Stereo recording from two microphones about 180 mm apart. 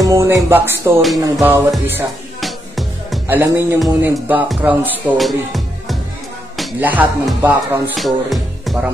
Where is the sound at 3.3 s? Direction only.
10° right (ahead or behind).